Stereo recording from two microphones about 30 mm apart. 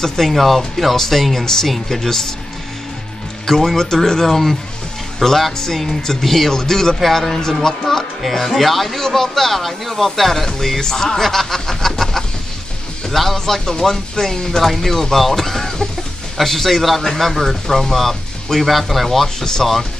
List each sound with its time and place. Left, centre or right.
0.0 s speech: centre
0.3 s speech: centre
0.9 s speech: centre
3.4 s speech: centre
7.0 s speech: centre
14.6 s speech: centre
19.0 s speech: centre
19.6 s speech: centre